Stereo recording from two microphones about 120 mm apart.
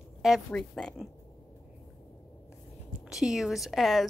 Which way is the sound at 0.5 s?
5° left (ahead or behind).